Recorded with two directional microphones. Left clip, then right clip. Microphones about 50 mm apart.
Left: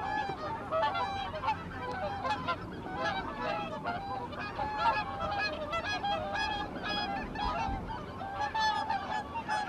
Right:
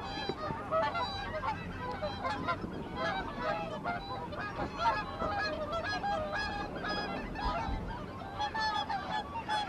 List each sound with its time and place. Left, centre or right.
0.7 s goose: centre
3.0 s honk: centre
4.6 s goose: left
4.9 s goose: centre
5.9 s honk: centre
8.5 s goose: centre
9.1 s goose: centre